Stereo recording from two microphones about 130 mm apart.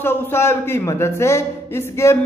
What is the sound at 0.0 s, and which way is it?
A woman's voice, 20° left (ahead or behind).